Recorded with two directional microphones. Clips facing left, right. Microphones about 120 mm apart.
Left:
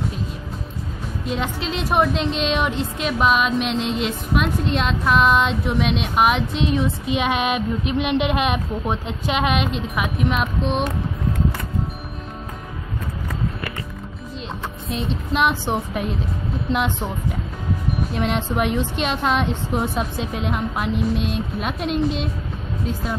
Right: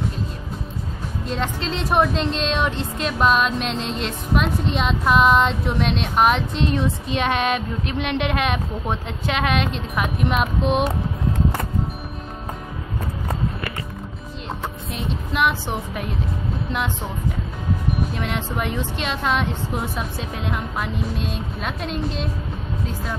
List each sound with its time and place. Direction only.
1.3 s a woman's voice: 10° left (ahead or behind)
10.0 s speech: centre (ahead or behind)
15.0 s a woman's voice: 25° left (ahead or behind)
18.2 s a woman's voice: 20° left (ahead or behind)